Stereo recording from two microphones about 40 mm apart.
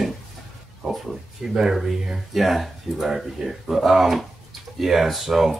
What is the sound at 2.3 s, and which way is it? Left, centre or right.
Speech, centre.